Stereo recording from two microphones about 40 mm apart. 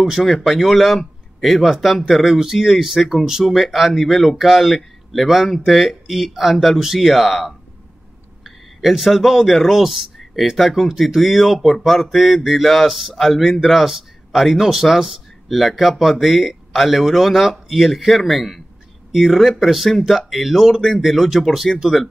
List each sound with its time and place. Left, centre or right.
0.1 s speech: centre